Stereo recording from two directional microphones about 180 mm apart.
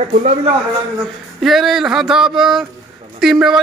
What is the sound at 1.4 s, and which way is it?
A man's voice, centre (ahead or behind).